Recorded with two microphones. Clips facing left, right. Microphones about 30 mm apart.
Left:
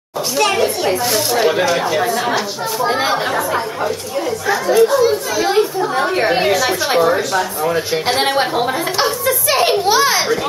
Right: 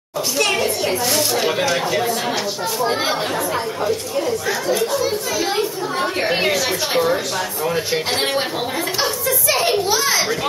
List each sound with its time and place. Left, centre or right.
0.4 s speech: centre
6.3 s a woman's voice: centre; by 10.2 s left